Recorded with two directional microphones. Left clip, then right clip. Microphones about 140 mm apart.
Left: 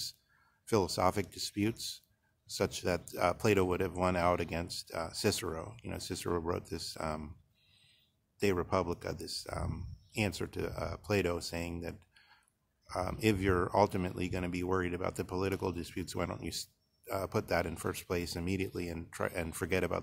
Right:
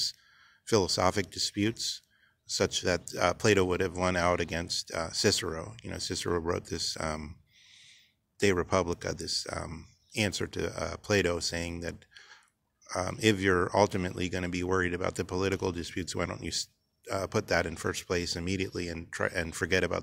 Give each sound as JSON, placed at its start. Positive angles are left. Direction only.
{"t": 0.7, "sound": "speech", "side_deg": -15}
{"t": 8.4, "sound": "speech", "side_deg": -25}
{"t": 11.8, "sound": "clicking", "side_deg": -20}
{"t": 12.8, "sound": "speech", "side_deg": -20}